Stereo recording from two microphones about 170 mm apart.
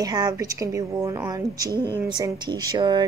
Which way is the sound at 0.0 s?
20° right (ahead or behind).